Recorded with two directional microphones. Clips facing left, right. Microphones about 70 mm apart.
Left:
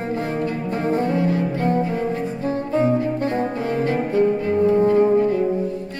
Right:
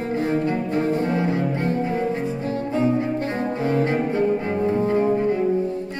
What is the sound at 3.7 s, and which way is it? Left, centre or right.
Music, right.